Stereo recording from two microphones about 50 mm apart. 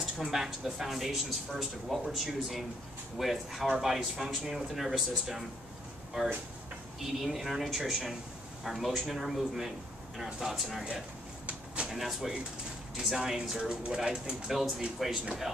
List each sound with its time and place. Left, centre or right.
0.0 s speech: centre
7.2 s speech: centre
11.4 s a sound: right
11.9 s speech: centre
13.7 s speech: right
14.0 s speech: centre